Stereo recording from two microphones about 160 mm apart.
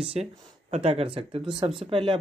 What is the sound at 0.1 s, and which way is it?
Speech, 40° right (ahead or behind).